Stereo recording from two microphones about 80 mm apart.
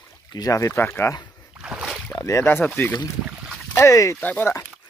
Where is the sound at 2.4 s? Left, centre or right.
Left.